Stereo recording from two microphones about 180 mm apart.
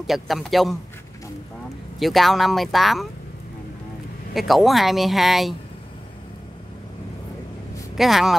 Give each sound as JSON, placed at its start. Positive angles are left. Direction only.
{"t": 0.0, "sound": "speech", "side_deg": 0}
{"t": 2.0, "sound": "speech", "side_deg": 0}
{"t": 4.3, "sound": "speech", "side_deg": 0}
{"t": 8.0, "sound": "speech", "side_deg": 0}